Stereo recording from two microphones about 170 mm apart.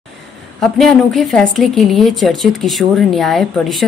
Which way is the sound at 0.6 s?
Centre (ahead or behind).